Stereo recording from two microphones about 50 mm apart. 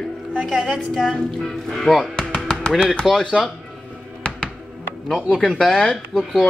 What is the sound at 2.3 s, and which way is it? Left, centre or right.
Music, centre.